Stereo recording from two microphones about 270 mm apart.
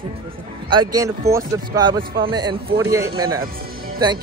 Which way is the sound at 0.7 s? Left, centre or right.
Centre.